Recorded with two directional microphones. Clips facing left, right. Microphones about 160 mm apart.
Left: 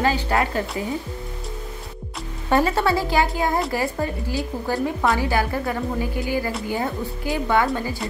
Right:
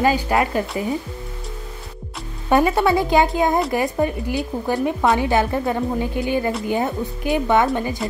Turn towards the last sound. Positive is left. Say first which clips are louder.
# right 3 dB
turn(degrees=-20)  # may be behind; listen again after turning